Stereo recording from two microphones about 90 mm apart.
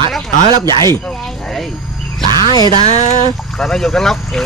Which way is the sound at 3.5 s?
5° left (ahead or behind).